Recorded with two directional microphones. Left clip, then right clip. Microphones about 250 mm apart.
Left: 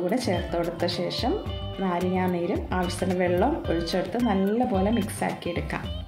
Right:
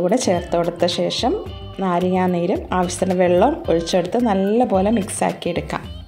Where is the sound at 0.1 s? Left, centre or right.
Right.